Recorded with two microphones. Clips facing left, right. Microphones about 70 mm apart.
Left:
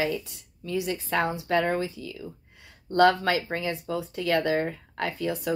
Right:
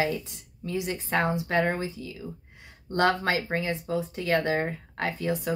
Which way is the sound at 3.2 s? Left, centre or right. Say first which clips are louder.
Left 1 dB; right.